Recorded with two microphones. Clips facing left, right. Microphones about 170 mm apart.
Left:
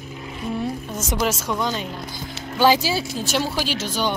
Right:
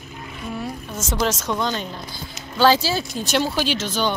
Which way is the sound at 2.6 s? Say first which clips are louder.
Even; 15° left (ahead or behind).